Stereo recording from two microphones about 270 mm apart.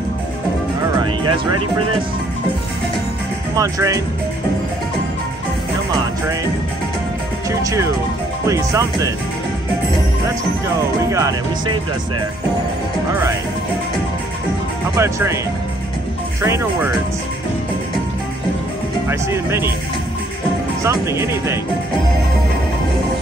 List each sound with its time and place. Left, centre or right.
0.9 s music: centre
3.5 s speech: centre
7.6 s speech: centre
11.0 s speech: centre
15.0 s speech: centre
16.4 s speech: centre
19.0 s speech: centre
20.8 s speech: centre